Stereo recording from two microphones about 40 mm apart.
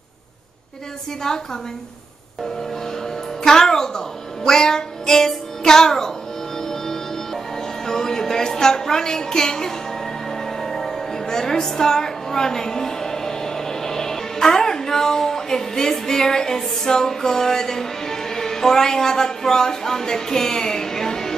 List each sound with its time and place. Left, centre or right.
1.2 s a woman's voice: centre
3.4 s music: centre
4.5 s speech: centre
6.6 s music: centre